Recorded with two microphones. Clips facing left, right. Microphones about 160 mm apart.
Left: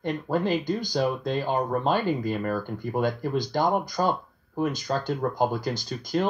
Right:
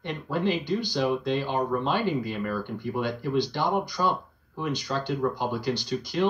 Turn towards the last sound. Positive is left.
turn(degrees=45)  # may be behind; listen again after turning